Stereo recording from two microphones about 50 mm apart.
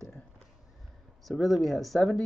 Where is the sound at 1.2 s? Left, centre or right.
Centre.